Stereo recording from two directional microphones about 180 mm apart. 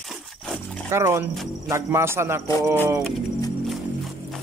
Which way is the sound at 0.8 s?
15° right (ahead or behind).